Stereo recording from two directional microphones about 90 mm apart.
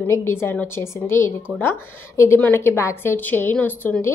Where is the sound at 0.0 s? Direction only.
30° left (ahead or behind).